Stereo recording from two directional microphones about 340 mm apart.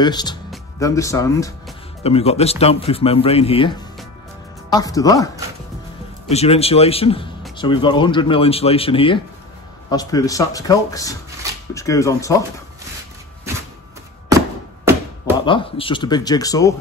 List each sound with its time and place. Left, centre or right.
0.0 s speech: centre
15.4 s speech: centre